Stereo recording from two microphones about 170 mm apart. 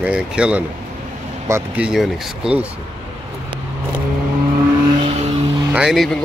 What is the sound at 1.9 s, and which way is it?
Speech, 5° right (ahead or behind).